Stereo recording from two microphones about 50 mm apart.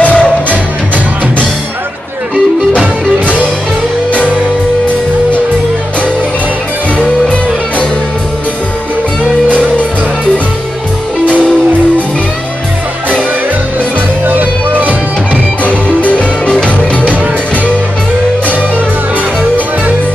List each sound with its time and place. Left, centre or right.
0.0 s music: left
14.2 s music: right
15.6 s music: left